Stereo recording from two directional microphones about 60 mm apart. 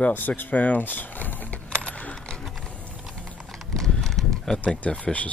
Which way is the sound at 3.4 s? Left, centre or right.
Centre.